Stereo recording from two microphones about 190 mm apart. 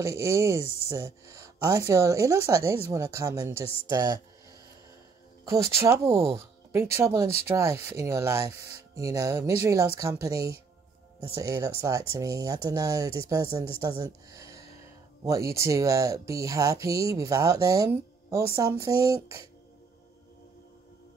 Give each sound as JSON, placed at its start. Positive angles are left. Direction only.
{"t": 0.0, "sound": "speech", "side_deg": -15}
{"t": 5.5, "sound": "a woman's voice", "side_deg": -15}